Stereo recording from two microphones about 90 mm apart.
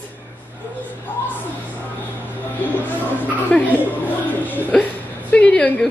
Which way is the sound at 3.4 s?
15° left (ahead or behind).